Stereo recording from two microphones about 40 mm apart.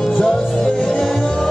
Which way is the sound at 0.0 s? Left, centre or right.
Centre.